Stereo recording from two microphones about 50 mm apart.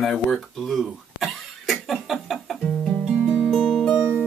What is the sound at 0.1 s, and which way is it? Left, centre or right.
Cough, centre.